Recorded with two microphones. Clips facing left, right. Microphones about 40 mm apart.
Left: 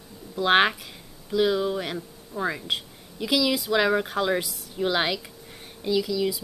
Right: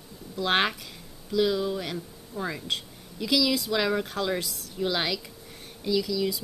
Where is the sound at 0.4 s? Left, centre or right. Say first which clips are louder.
Left 5 dB; centre.